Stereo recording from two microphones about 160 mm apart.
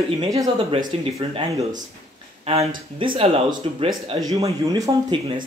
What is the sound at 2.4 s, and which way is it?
Speech, 40° right (ahead or behind).